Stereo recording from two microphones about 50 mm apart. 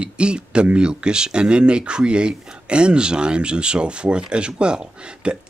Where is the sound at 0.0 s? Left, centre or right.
Right.